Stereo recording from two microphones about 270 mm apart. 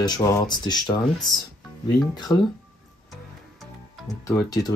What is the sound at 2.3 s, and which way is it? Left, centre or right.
Speech, centre.